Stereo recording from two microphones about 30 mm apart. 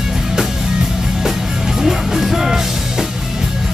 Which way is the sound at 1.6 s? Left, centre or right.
Centre.